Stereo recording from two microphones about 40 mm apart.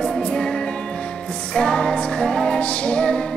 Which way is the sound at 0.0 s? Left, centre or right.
Left.